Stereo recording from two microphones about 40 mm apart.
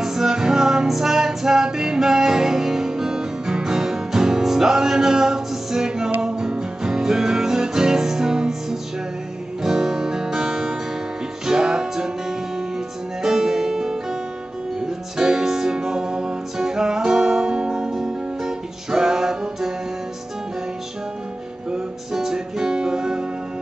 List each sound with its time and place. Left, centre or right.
0.0 s music: centre
9.6 s guitar: centre
11.4 s music: centre
22.1 s music: centre